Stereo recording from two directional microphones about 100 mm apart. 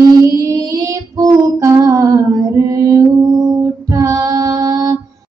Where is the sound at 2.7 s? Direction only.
35° right (ahead or behind).